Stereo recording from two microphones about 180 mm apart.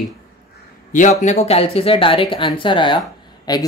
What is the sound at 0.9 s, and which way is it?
Speech, 40° left (ahead or behind).